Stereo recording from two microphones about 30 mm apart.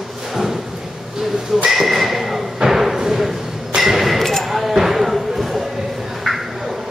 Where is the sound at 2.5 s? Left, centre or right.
Centre.